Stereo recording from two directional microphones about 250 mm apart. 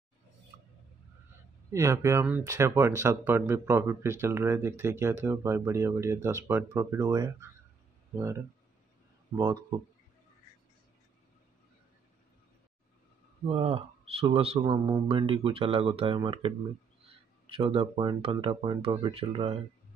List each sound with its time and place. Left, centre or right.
1.7 s speech: centre
13.5 s speech: right